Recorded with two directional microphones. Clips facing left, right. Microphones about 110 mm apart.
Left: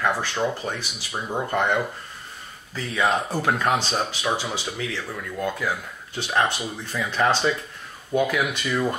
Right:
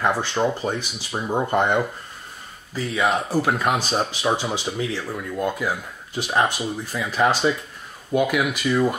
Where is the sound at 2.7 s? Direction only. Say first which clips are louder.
Right 1 dB; 10° right (ahead or behind).